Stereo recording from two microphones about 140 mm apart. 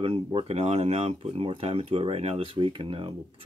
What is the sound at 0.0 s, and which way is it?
Speech, 40° right (ahead or behind).